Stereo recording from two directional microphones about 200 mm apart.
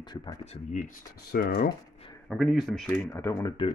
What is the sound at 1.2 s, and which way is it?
Speech, 50° left (ahead or behind).